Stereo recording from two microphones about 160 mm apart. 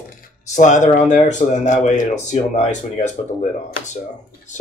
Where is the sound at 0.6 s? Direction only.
50° left (ahead or behind).